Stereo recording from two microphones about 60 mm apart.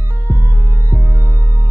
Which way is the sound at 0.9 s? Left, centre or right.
Right.